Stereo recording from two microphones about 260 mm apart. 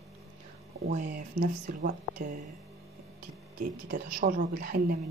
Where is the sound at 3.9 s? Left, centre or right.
Right.